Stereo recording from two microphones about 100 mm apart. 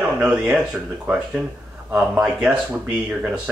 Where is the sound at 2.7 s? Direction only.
15° right (ahead or behind).